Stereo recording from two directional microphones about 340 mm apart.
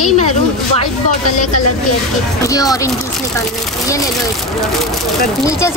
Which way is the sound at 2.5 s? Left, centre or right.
Centre.